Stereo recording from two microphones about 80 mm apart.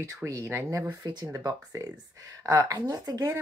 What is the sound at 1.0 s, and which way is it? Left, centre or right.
Speech, right.